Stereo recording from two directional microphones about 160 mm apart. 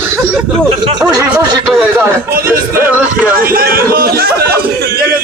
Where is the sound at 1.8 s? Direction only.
15° right (ahead or behind).